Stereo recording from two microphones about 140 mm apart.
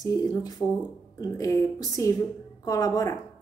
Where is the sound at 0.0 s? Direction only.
25° left (ahead or behind).